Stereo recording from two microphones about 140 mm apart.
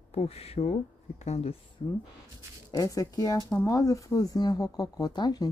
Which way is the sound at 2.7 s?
25° left (ahead or behind).